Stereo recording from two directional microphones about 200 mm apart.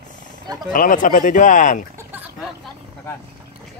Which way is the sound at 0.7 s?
40° left (ahead or behind).